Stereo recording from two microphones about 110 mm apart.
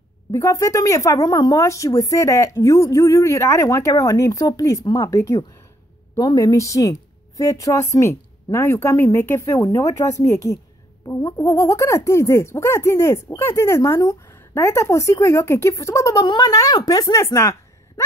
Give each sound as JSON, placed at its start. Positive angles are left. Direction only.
{"t": 0.3, "sound": "speech", "side_deg": 30}